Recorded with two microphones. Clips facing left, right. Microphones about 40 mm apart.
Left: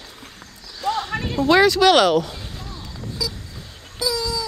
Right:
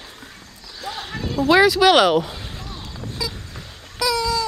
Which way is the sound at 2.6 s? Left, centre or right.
Right.